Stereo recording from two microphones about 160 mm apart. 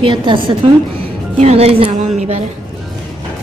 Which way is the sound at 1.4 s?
40° right (ahead or behind).